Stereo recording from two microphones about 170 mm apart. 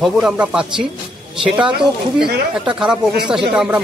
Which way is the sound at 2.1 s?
70° right (ahead or behind).